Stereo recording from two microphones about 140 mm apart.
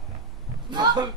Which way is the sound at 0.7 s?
30° right (ahead or behind).